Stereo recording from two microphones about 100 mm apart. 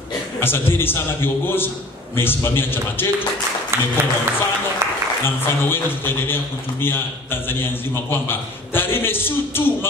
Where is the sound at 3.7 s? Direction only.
25° right (ahead or behind).